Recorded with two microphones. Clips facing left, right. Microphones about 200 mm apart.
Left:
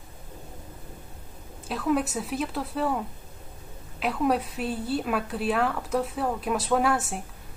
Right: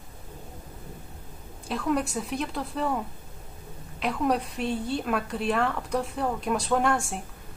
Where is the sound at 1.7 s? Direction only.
5° left (ahead or behind).